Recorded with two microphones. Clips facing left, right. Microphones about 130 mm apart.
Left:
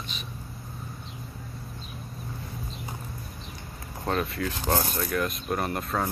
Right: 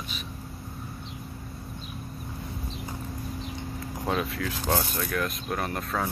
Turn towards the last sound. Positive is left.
turn(degrees=0)  # may be behind; listen again after turning